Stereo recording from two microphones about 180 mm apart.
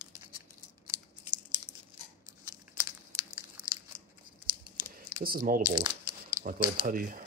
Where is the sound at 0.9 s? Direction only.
15° right (ahead or behind).